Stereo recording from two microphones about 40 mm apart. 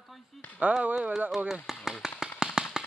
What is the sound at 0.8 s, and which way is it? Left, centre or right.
Speech, right.